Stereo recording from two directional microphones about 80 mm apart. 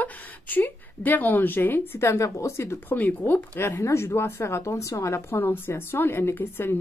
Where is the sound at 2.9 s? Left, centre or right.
Left.